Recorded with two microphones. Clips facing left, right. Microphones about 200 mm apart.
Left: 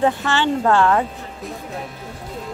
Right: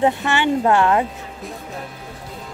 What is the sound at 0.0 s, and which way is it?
Speech, 20° right (ahead or behind).